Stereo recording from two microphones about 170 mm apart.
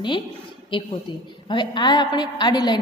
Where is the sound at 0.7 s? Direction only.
30° left (ahead or behind).